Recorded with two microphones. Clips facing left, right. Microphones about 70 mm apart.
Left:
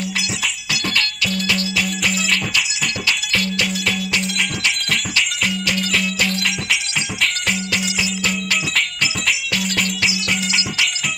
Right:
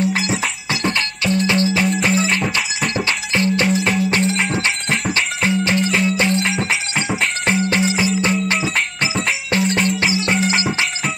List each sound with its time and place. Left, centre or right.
0.0 s music: right